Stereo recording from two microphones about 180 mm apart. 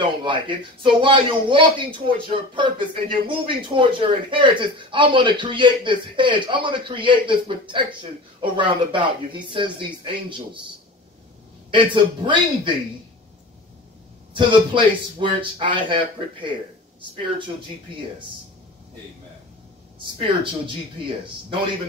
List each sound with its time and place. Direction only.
0.0 s speech: 25° right (ahead or behind)
11.7 s speech: 25° right (ahead or behind)
14.3 s speech: 25° right (ahead or behind)
20.2 s speech: 25° right (ahead or behind)